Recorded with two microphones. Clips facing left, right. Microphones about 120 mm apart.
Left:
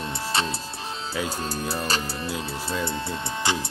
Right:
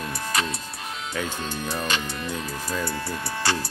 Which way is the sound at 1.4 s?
40° left (ahead or behind).